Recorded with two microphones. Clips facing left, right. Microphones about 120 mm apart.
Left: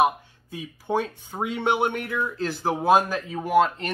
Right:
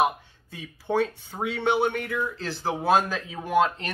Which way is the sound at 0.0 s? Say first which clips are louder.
Left 2 dB; 10° left (ahead or behind).